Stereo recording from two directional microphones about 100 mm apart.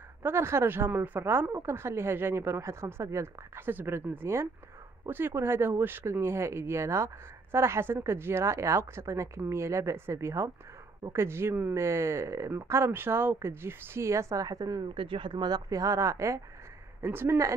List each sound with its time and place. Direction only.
0.2 s speech: 25° right (ahead or behind)
15.0 s speech: 60° right (ahead or behind); by 17.6 s 25° right (ahead or behind)